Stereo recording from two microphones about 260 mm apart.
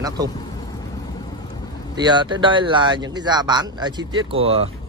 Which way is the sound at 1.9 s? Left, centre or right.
Centre.